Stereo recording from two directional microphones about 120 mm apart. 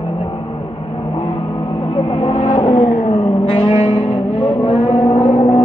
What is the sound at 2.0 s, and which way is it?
Music, 50° left (ahead or behind).